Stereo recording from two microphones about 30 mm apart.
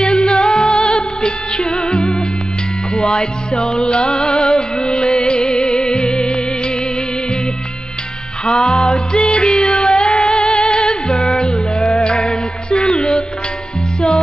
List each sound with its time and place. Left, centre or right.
0.0 s music: left
8.5 s music: left